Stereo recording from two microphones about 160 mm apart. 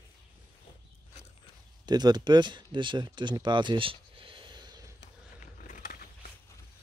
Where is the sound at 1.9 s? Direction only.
25° right (ahead or behind).